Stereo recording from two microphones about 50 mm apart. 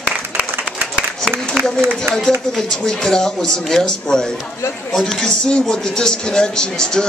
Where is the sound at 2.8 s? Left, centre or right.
Centre.